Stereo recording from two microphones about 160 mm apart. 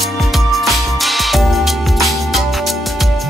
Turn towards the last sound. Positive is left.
turn(degrees=0)  # may be behind; listen again after turning